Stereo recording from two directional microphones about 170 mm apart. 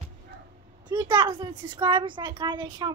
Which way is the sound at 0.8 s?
25° right (ahead or behind).